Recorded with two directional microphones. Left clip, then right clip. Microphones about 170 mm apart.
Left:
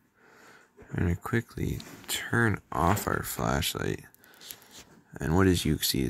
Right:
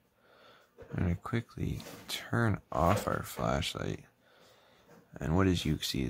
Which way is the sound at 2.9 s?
15° left (ahead or behind).